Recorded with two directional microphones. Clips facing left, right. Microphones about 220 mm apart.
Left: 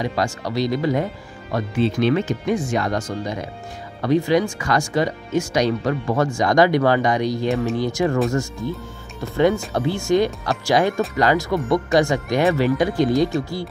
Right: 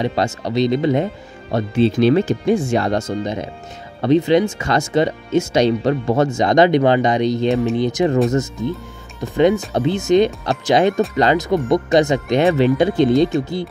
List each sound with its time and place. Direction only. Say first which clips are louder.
0.0 s speech: right 3 dB; 25° right (ahead or behind)